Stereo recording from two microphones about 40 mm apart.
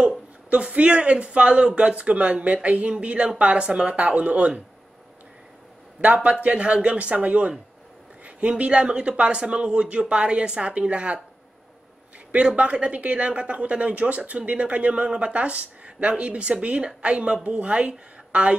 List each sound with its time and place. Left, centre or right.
0.5 s a woman's voice: right
5.9 s a woman's voice: right
12.3 s a woman's voice: right